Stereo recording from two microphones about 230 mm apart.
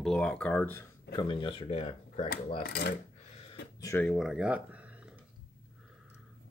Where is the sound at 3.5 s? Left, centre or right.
Centre.